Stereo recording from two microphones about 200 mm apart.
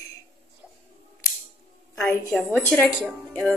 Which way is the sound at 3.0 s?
Centre (ahead or behind).